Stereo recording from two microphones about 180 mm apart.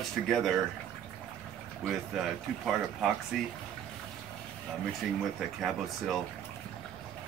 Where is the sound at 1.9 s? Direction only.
Centre (ahead or behind).